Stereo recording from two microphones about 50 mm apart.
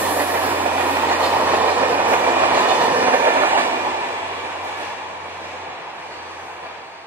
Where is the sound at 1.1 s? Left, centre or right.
Right.